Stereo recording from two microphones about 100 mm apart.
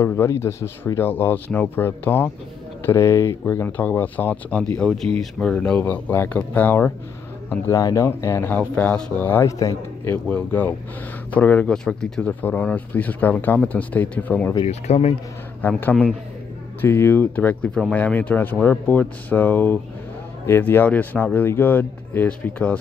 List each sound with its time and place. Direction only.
0.0 s speech: 25° left (ahead or behind)
7.6 s speech: 30° left (ahead or behind)
9.5 s a man's voice: 35° left (ahead or behind)
10.2 s speech: 15° left (ahead or behind)
14.7 s speech: 90° left
15.8 s speech: 20° left (ahead or behind)